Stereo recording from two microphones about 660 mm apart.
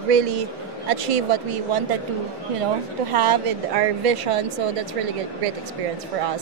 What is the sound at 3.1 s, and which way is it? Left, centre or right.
Speech, right.